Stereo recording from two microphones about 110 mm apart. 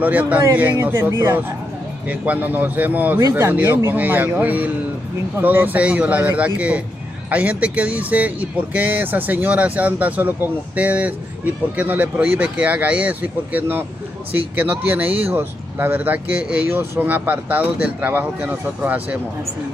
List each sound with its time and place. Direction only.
0.0 s speech: 15° right (ahead or behind); by 1.4 s 30° right (ahead or behind)
2.0 s speech: 15° right (ahead or behind)